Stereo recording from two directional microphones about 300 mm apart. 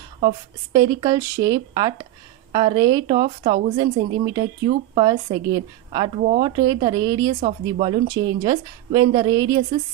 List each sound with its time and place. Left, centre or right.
0.2 s a woman's voice: centre
6.4 s a woman's voice: centre